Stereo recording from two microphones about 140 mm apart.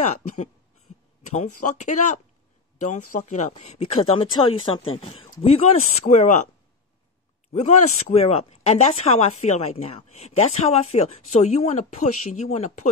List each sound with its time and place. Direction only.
1.3 s speech: 60° left (ahead or behind)
7.5 s speech: 55° left (ahead or behind)